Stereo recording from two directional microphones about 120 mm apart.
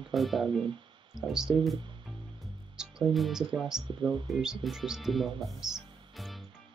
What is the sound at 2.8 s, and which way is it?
Speech, 5° right (ahead or behind).